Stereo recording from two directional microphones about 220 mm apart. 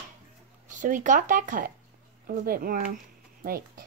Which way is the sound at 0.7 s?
35° right (ahead or behind).